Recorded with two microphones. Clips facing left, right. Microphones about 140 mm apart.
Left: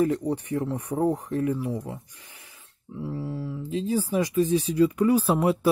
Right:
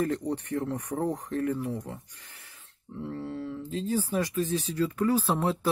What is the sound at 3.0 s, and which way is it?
Speech, 10° left (ahead or behind).